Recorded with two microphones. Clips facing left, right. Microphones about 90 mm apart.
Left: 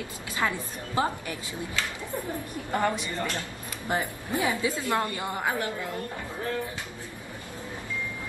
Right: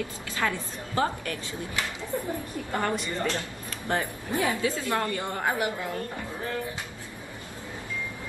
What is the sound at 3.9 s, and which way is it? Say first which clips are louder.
A woman's voice: even; 15° left (ahead or behind).